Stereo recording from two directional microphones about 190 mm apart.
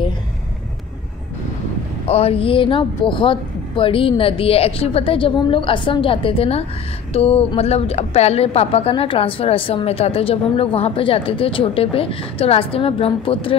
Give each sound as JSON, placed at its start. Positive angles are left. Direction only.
{"t": 2.0, "sound": "a woman's voice", "side_deg": 30}